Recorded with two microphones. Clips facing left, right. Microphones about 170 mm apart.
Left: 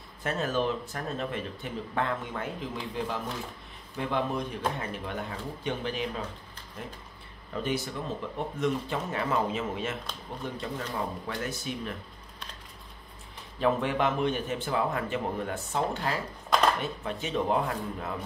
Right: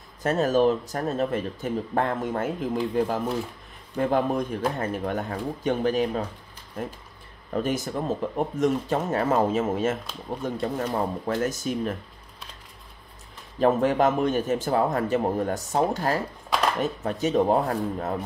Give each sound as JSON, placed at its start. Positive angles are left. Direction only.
{"t": 0.2, "sound": "speech", "side_deg": -40}
{"t": 7.5, "sound": "speech", "side_deg": -45}
{"t": 13.6, "sound": "speech", "side_deg": -40}